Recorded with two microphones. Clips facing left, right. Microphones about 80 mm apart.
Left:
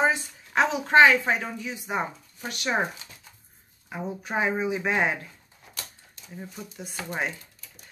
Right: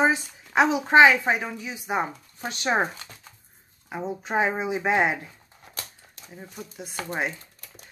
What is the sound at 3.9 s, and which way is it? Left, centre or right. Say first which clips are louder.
Speech: right 3 dB; right.